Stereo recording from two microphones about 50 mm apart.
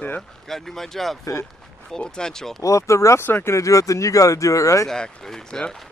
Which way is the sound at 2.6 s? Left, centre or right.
Left.